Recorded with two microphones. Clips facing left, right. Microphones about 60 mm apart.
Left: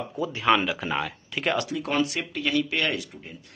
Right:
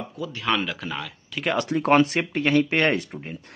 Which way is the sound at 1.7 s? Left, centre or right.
Right.